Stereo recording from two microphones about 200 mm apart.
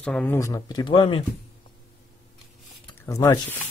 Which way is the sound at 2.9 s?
15° left (ahead or behind).